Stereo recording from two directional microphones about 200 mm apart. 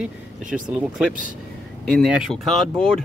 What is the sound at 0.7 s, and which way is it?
Speech, centre (ahead or behind).